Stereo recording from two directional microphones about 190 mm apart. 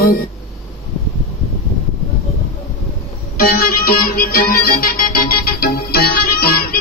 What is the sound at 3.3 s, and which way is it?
Music, 50° left (ahead or behind).